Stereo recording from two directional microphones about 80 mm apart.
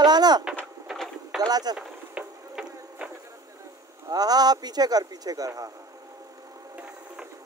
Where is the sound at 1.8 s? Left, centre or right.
Centre.